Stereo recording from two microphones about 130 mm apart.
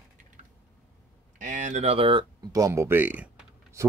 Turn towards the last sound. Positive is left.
turn(degrees=-20)  # may be behind; listen again after turning